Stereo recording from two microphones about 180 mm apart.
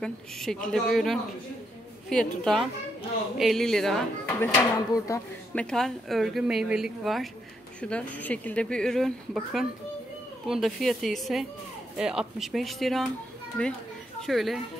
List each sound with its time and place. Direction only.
0.0 s a woman's voice: 5° left (ahead or behind)
4.4 s speech: 20° left (ahead or behind)
5.6 s a woman's voice: 5° left (ahead or behind)